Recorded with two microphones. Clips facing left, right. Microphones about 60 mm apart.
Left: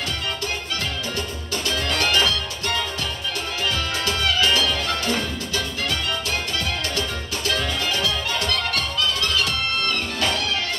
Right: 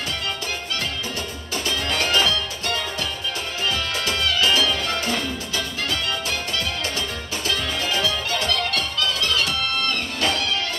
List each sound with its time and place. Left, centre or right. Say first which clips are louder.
1.9 s music: even; centre
4.4 s music: right 2 dB; centre
8.7 s music: even; left